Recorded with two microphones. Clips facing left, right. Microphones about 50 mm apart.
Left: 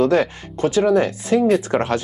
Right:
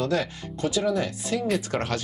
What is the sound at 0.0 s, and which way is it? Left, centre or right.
Speech, left.